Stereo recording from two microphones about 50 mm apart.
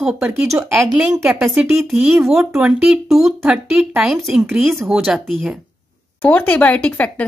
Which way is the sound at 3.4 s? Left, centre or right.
Centre.